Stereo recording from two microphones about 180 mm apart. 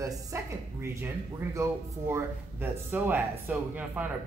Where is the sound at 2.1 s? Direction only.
10° right (ahead or behind).